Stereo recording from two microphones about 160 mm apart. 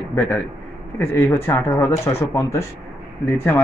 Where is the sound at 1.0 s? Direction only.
15° left (ahead or behind).